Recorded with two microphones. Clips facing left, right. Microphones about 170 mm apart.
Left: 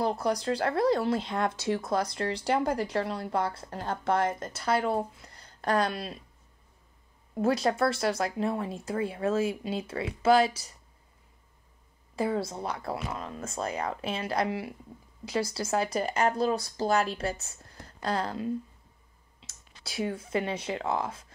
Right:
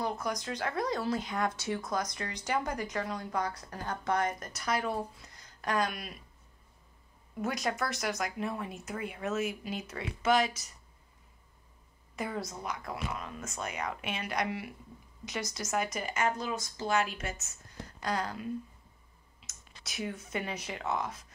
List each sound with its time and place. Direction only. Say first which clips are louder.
0.0 s speech: left 6 dB; 35° left (ahead or behind)
7.3 s speech: left 7 dB; 30° left (ahead or behind)
12.2 s speech: left 7 dB; 30° left (ahead or behind)